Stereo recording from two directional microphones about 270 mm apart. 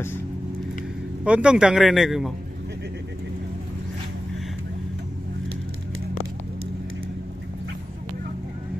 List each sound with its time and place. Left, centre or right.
1.2 s a man's voice: centre